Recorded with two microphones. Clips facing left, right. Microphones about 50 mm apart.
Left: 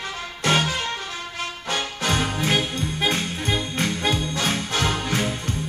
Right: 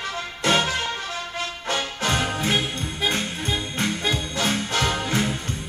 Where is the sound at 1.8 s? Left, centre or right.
Right.